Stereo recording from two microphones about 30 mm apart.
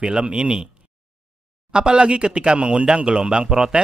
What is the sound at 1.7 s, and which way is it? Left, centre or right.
Speech, right.